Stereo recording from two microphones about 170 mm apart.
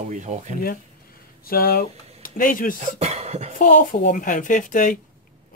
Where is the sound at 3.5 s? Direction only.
55° left (ahead or behind).